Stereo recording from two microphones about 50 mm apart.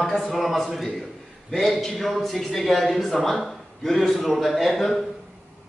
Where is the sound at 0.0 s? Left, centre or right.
Centre.